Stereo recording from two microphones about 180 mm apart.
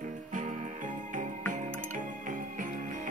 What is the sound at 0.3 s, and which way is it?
Music, 45° right (ahead or behind).